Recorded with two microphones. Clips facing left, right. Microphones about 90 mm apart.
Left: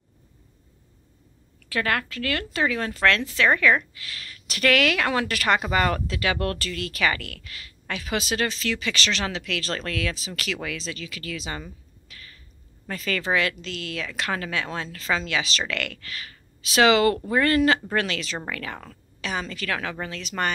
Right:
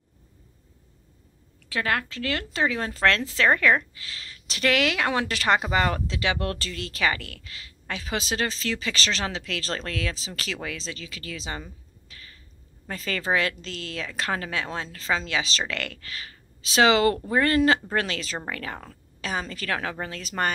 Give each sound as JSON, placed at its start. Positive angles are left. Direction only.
{"t": 1.7, "sound": "a woman's voice", "side_deg": -20}
{"t": 12.1, "sound": "a sound", "side_deg": -25}
{"t": 12.9, "sound": "a woman's voice", "side_deg": -30}